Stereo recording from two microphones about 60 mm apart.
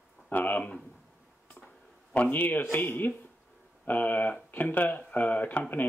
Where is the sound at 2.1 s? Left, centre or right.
Left.